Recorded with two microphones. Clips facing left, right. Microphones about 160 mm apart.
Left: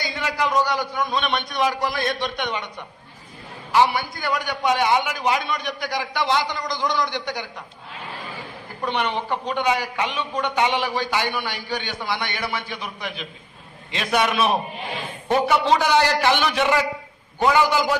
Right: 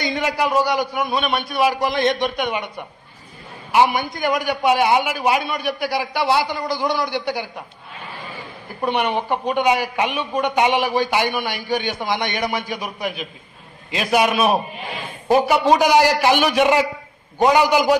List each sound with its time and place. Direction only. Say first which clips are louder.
0.0 s a man's voice: right 4 dB; 20° right (ahead or behind)
3.7 s a man's voice: right 2 dB; 15° right (ahead or behind)
8.8 s a man's voice: right 4 dB; 10° right (ahead or behind)
15.7 s a man's voice: right 5 dB; 15° right (ahead or behind)